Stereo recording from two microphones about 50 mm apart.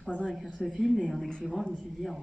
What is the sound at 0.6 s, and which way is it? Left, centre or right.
Speech, centre.